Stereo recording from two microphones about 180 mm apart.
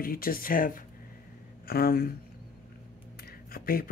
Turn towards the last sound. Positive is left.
turn(degrees=55)  # may be behind; listen again after turning